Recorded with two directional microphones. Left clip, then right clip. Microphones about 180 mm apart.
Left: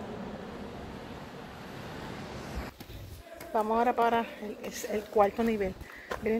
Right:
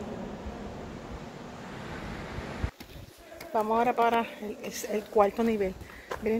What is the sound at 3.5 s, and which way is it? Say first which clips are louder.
Speech: right 1 dB; 5° right (ahead or behind).